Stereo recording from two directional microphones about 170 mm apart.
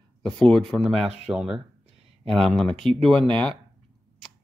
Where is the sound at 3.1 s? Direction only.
30° right (ahead or behind).